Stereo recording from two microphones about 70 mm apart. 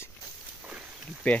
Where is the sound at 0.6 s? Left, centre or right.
Centre.